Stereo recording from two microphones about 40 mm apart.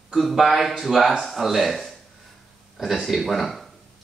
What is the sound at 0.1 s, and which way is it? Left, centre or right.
Speech, centre.